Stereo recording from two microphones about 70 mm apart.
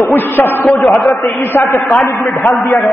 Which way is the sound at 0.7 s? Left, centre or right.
Centre.